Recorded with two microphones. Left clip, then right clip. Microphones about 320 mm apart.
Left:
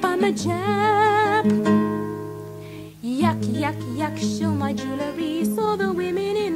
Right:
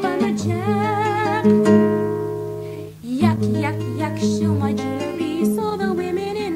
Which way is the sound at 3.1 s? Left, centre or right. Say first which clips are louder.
Right 2 dB; left.